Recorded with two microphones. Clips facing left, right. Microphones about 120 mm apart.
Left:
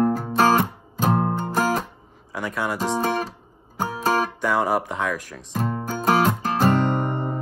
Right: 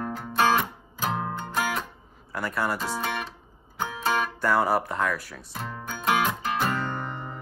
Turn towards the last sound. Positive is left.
turn(degrees=45)  # may be behind; listen again after turning